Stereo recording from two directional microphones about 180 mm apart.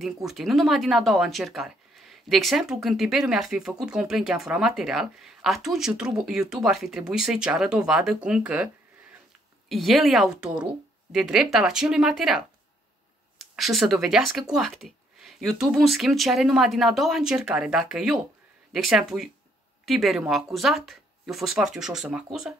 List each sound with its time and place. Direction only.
0.0 s speech: centre (ahead or behind)
9.7 s speech: centre (ahead or behind)